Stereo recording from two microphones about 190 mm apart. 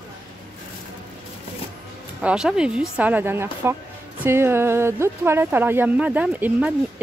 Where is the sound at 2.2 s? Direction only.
5° right (ahead or behind).